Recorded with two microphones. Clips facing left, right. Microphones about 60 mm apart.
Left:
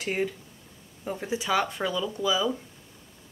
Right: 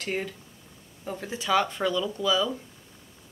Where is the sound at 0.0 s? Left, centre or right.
Centre.